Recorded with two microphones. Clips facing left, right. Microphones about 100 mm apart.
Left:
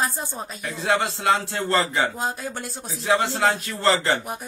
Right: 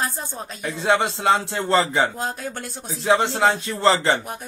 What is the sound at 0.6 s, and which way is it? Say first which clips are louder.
A man's voice: right 3 dB; 25° right (ahead or behind).